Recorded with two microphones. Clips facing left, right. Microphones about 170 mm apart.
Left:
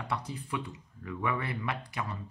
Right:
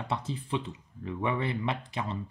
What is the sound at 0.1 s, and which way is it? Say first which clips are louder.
A man's voice: right 3 dB; 25° right (ahead or behind).